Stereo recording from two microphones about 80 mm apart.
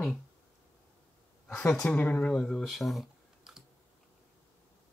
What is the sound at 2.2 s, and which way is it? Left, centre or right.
Speech, centre.